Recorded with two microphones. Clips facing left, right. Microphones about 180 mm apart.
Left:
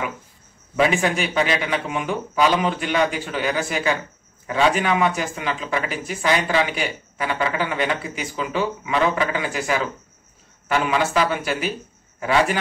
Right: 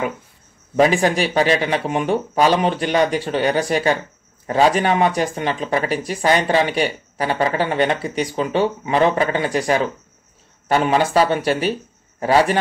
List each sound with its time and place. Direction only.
0.7 s speech: 35° right (ahead or behind)